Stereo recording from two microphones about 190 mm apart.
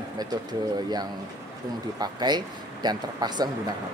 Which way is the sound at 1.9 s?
20° right (ahead or behind).